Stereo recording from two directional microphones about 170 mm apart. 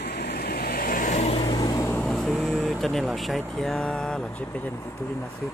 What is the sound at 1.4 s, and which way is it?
Vehicle, 25° left (ahead or behind).